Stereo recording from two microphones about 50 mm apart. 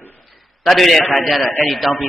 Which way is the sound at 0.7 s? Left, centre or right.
Centre.